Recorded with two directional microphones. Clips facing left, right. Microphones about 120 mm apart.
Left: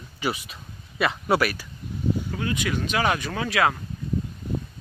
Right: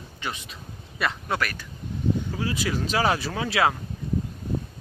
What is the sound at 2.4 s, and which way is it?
Speech, 30° right (ahead or behind).